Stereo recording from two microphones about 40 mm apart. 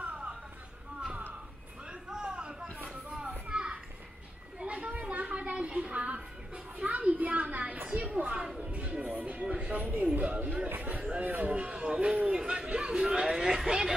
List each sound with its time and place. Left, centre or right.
0.0 s music: right
2.0 s a sound: centre
2.9 s children playing: right
4.6 s chatter: right
5.1 s a sound: right
8.5 s music: right
10.2 s chatter: right
11.2 s music: right
12.4 s a sound: right